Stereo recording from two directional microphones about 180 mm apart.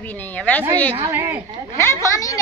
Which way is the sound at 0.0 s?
10° left (ahead or behind).